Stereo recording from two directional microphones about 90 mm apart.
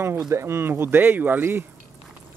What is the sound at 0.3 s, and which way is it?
Speech, 30° right (ahead or behind).